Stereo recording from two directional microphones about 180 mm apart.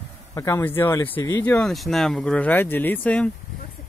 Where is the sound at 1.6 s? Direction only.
Centre (ahead or behind).